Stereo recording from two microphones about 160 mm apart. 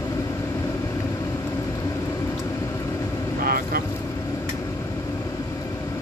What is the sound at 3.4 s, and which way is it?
Vehicle, 70° right (ahead or behind).